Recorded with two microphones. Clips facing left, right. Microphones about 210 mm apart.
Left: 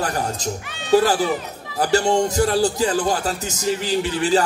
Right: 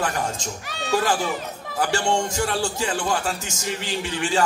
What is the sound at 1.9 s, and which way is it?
A man's voice, 35° left (ahead or behind).